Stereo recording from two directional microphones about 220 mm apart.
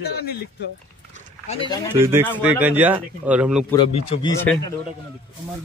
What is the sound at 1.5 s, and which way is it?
Speech, 25° left (ahead or behind).